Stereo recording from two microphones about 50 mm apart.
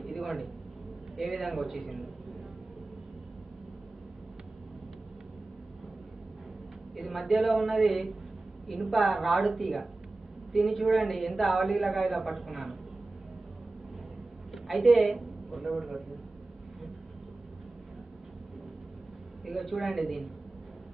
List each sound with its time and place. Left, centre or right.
0.0 s a sound: centre
1.1 s a woman's voice: centre
7.0 s a woman's voice: centre
14.5 s a woman's voice: centre
19.4 s a woman's voice: centre